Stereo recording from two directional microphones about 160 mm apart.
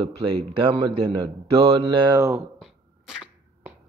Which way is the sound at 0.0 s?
35° right (ahead or behind).